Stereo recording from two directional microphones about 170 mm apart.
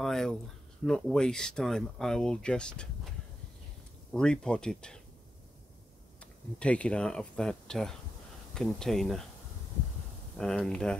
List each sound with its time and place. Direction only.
0.0 s speech: centre (ahead or behind)
6.6 s speech: 5° left (ahead or behind)
10.3 s speech: 5° left (ahead or behind)